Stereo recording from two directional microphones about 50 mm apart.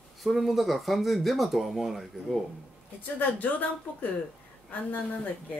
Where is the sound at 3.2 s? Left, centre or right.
Left.